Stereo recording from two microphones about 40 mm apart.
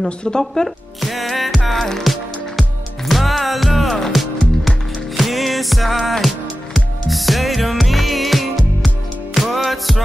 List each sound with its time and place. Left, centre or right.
0.2 s speech: centre
1.0 s music: centre
1.7 s speech: centre
3.1 s music: centre